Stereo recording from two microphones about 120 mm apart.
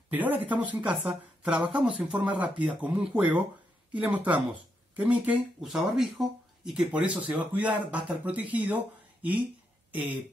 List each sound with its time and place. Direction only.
0.1 s speech: 15° right (ahead or behind)